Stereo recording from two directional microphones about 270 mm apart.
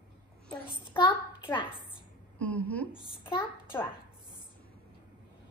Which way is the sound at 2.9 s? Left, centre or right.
Centre.